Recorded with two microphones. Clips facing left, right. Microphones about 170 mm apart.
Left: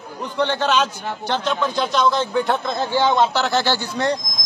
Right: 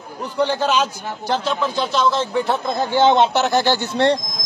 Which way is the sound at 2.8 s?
20° right (ahead or behind).